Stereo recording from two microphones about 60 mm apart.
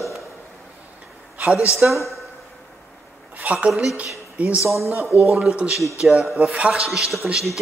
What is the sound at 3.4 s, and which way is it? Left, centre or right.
A woman's voice, right.